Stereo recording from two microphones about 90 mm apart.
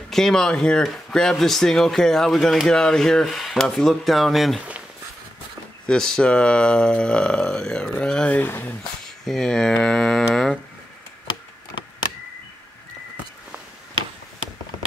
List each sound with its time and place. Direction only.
0.1 s speech: 5° left (ahead or behind)
4.6 s speech: 15° right (ahead or behind)
5.9 s speech: 10° left (ahead or behind)
8.4 s speech: 20° left (ahead or behind)
9.0 s speech: 5° left (ahead or behind)